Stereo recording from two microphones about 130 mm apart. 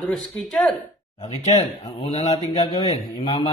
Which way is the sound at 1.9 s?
55° left (ahead or behind).